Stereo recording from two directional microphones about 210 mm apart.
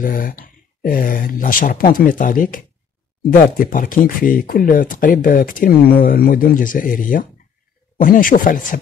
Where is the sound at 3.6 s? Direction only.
40° left (ahead or behind).